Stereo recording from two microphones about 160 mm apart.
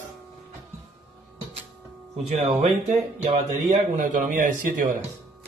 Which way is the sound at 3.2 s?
50° right (ahead or behind).